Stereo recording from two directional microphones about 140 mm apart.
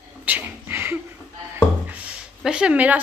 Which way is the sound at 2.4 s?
5° right (ahead or behind).